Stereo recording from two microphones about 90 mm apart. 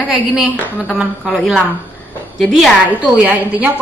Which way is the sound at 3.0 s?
20° right (ahead or behind).